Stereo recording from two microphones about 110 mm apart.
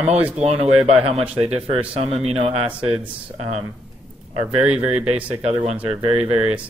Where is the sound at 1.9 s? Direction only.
60° right (ahead or behind).